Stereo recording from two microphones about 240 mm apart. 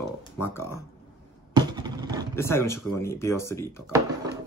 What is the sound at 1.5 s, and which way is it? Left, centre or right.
Vehicle, centre.